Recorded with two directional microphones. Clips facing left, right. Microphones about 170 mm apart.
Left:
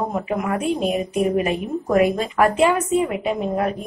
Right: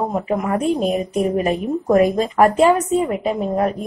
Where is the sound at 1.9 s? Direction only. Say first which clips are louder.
Right 2 dB; 40° right (ahead or behind).